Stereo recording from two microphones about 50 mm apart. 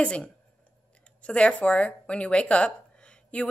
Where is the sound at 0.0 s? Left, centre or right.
Centre.